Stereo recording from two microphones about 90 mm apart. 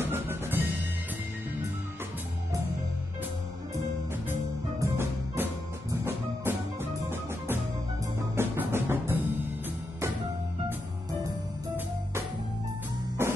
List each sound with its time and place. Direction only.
0.0 s music: 25° right (ahead or behind)
4.7 s music: 30° right (ahead or behind)
13.2 s music: 30° right (ahead or behind)